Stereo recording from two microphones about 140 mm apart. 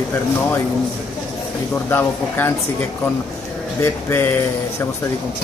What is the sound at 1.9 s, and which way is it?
Speech, 15° left (ahead or behind).